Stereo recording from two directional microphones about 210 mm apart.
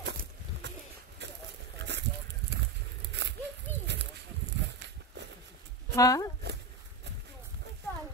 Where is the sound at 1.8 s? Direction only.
55° right (ahead or behind).